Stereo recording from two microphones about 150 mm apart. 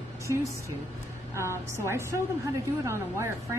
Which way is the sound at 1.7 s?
15° right (ahead or behind).